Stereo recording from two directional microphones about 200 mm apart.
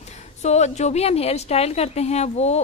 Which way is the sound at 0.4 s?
35° left (ahead or behind).